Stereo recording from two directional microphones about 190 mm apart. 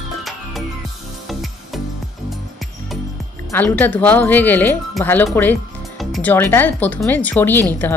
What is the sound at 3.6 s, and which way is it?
Speech, 10° left (ahead or behind).